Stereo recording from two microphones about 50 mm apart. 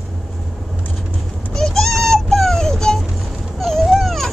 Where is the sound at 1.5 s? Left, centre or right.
Centre.